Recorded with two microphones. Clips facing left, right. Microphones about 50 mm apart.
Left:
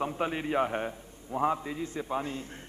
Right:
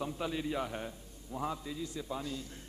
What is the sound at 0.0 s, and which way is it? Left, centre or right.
A man's voice, left.